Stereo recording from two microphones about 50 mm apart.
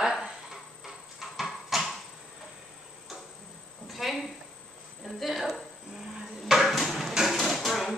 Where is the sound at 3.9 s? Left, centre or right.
Centre.